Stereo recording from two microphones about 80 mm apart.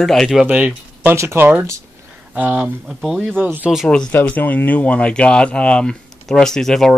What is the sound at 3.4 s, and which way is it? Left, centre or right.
Speech, right.